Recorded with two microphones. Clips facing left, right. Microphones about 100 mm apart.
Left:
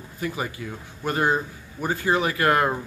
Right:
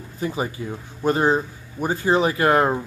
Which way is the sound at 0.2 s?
25° right (ahead or behind).